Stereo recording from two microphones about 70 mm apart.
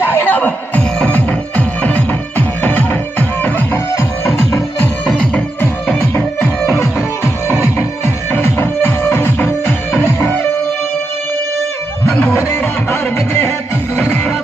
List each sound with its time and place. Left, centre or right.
0.0 s music: left
5.0 s music: centre
6.6 s music: left
8.0 s music: left
12.4 s music: left